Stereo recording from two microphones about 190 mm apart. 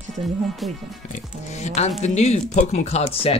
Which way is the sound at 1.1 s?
35° left (ahead or behind).